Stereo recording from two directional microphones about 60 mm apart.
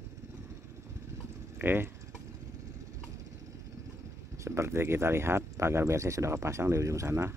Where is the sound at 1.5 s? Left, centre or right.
Right.